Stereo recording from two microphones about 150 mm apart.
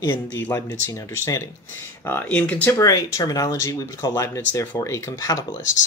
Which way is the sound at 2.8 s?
25° left (ahead or behind).